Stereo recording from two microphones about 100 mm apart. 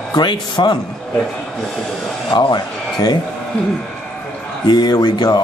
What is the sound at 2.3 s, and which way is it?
Speech, 45° left (ahead or behind).